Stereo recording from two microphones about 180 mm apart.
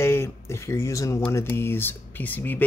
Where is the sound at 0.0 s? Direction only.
15° left (ahead or behind).